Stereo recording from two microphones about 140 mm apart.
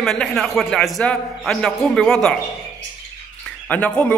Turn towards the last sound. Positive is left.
turn(degrees=10)  # may be behind; listen again after turning